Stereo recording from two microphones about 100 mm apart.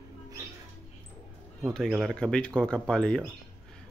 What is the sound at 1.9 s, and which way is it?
A man's voice, 5° left (ahead or behind).